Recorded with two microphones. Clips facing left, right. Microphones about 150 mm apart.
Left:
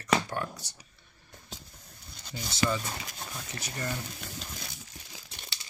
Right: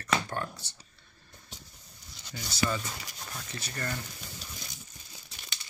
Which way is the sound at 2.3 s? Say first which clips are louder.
Left 2 dB; 25° left (ahead or behind).